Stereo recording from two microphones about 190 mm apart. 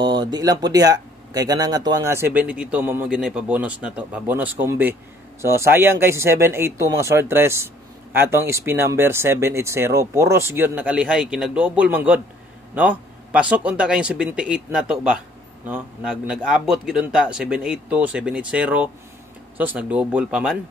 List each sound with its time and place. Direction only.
0.0 s a man's voice: 25° right (ahead or behind); by 20.5 s 5° right (ahead or behind)